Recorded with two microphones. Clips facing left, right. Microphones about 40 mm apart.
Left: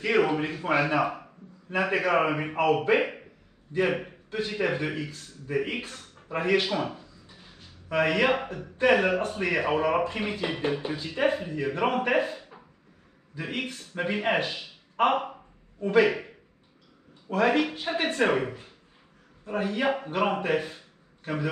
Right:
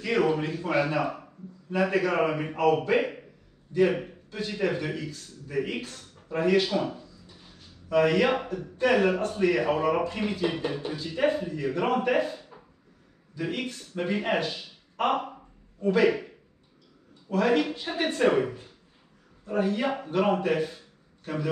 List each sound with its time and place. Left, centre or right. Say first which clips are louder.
0.0 s a man's voice: left 1 dB; left
17.3 s a man's voice: even; left